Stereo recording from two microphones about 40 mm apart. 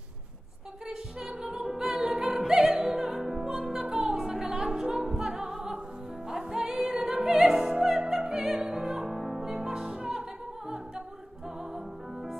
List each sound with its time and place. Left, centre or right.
0.8 s music: right
1.7 s music: centre
3.8 s music: right
7.7 s opera: centre
8.5 s music: centre